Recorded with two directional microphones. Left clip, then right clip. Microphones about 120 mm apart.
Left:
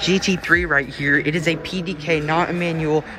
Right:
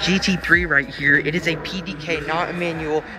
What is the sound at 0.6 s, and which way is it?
Speech, 60° left (ahead or behind).